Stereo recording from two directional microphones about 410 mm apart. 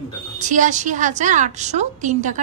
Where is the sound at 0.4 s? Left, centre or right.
Centre.